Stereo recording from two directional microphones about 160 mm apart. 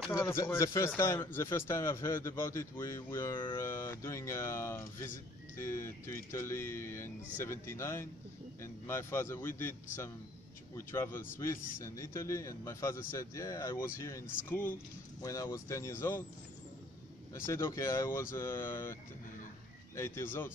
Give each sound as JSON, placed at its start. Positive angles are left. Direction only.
{"t": 0.1, "sound": "a man's voice", "side_deg": 20}
{"t": 17.3, "sound": "speech", "side_deg": 15}
{"t": 20.0, "sound": "speech", "side_deg": 15}